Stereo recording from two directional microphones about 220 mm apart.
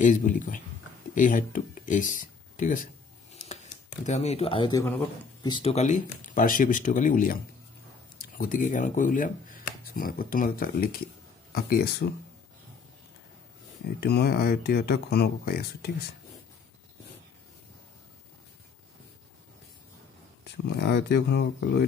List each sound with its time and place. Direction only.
0.0 s speech: 35° left (ahead or behind)
13.9 s speech: 45° left (ahead or behind)
20.6 s speech: 50° left (ahead or behind)